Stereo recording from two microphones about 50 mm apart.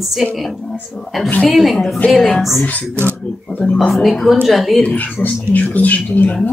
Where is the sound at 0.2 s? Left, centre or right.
Centre.